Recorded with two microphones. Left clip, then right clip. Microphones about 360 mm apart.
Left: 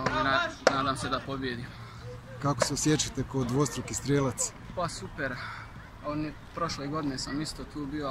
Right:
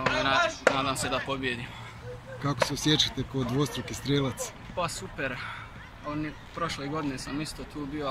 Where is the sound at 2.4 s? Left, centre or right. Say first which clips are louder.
Right 1 dB; centre.